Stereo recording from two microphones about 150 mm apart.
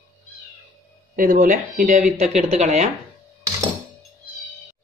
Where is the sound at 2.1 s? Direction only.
45° right (ahead or behind).